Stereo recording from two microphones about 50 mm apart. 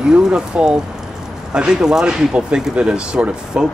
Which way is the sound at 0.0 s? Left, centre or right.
Centre.